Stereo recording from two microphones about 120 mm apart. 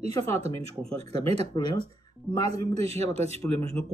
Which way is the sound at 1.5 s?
35° left (ahead or behind).